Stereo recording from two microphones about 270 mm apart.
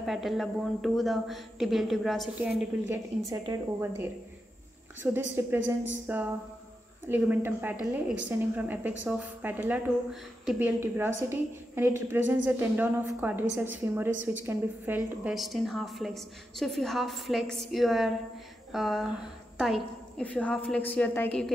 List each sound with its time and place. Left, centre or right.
0.0 s a woman's voice: centre